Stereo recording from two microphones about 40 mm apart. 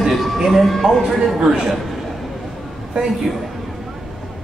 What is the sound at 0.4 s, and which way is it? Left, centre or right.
Speech, centre.